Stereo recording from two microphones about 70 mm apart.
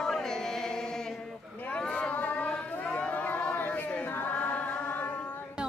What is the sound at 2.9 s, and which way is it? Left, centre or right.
Choir, centre.